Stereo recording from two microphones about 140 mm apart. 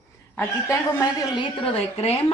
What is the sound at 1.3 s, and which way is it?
Speech, 40° left (ahead or behind).